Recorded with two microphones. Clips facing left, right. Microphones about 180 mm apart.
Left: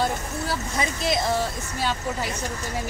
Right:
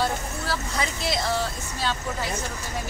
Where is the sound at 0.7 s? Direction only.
20° left (ahead or behind).